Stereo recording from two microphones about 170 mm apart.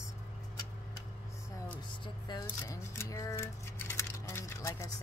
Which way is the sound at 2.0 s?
25° left (ahead or behind).